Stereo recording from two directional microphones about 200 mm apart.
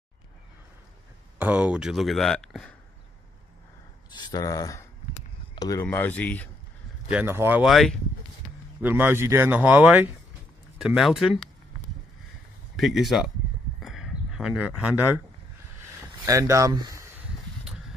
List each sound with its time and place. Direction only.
1.4 s speech: 5° right (ahead or behind)
4.1 s speech: 20° left (ahead or behind)
7.1 s speech: 10° right (ahead or behind)
8.8 s speech: 10° right (ahead or behind)
12.7 s speech: centre (ahead or behind)
13.8 s a sound: centre (ahead or behind)
16.3 s speech: 15° right (ahead or behind)